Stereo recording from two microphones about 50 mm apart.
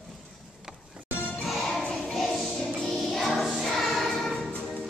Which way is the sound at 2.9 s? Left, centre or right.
Centre.